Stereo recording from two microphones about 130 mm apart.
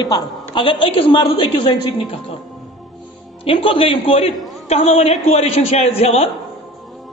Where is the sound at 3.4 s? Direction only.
45° left (ahead or behind).